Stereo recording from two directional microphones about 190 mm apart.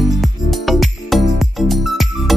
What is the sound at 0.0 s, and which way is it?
Music, centre (ahead or behind).